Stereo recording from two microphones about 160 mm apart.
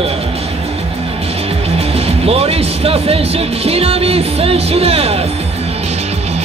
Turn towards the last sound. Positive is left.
turn(degrees=-40)  # may be behind; listen again after turning